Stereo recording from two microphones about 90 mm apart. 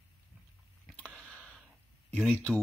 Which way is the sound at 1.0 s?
15° left (ahead or behind).